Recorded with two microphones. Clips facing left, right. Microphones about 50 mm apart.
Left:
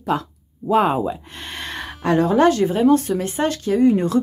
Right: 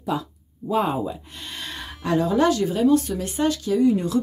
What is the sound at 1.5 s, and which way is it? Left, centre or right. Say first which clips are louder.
Speech: left 5 dB; left.